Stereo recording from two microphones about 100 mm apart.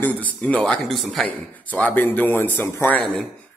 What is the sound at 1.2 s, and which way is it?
Speech, 15° left (ahead or behind).